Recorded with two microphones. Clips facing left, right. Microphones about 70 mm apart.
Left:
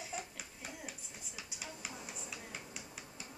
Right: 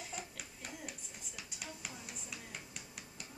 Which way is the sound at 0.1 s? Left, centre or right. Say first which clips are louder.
Left 2 dB; centre.